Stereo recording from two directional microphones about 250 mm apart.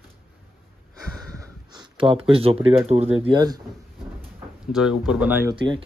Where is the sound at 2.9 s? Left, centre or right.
Right.